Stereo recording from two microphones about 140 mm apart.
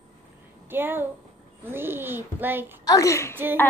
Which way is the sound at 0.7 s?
15° right (ahead or behind).